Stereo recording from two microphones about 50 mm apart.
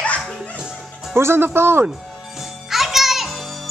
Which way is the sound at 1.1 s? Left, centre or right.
Right.